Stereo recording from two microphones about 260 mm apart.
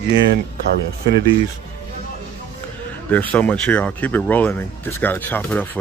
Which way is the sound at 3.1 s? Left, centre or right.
Centre.